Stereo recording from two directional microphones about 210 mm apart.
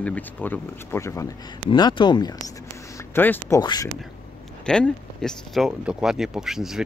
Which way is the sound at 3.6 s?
20° left (ahead or behind).